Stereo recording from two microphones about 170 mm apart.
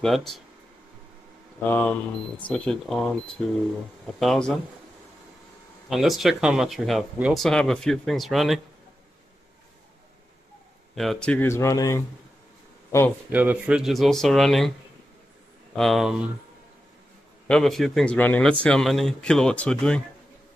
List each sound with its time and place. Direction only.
0.0 s a man's voice: centre (ahead or behind)
1.6 s a man's voice: 10° left (ahead or behind)
5.9 s a man's voice: centre (ahead or behind)
11.0 s speech: 5° left (ahead or behind); by 12.0 s 20° left (ahead or behind)
13.3 s a man's voice: 10° right (ahead or behind)
15.7 s a man's voice: centre (ahead or behind)
17.5 s a man's voice: 5° left (ahead or behind)